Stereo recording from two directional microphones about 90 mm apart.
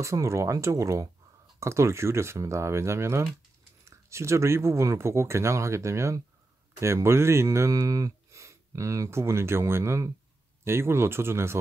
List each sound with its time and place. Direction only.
0.0 s speech: 35° right (ahead or behind)